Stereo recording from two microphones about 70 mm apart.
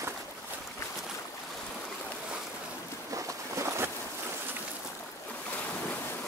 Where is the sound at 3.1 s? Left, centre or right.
Right.